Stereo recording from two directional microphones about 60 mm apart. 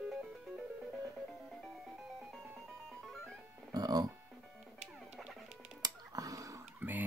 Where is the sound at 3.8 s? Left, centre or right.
Right.